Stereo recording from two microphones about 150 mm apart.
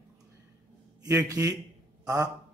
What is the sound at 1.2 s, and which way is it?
Speech, 20° right (ahead or behind).